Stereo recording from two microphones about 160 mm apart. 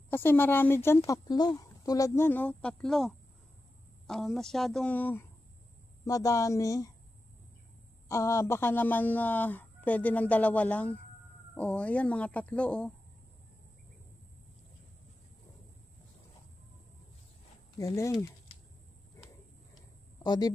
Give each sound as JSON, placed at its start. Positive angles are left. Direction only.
{"t": 0.1, "sound": "a woman's voice", "side_deg": 15}
{"t": 6.0, "sound": "speech", "side_deg": 20}
{"t": 8.1, "sound": "a woman's voice", "side_deg": 15}
{"t": 17.7, "sound": "speech", "side_deg": 20}
{"t": 20.2, "sound": "speech", "side_deg": 25}